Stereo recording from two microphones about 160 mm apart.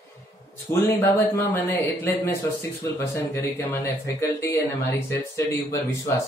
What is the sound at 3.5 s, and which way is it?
Speech, 15° left (ahead or behind).